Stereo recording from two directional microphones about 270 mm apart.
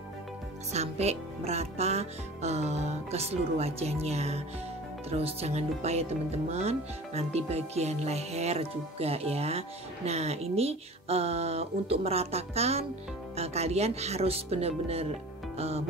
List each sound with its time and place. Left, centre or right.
0.7 s speech: right